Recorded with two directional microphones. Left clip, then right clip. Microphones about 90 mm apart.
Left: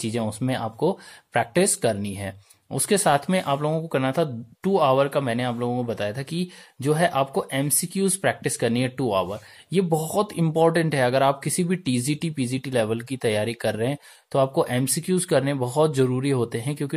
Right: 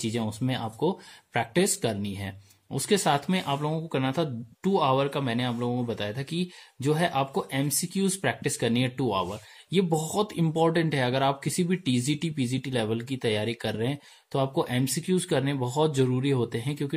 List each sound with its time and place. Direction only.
0.0 s speech: 30° left (ahead or behind)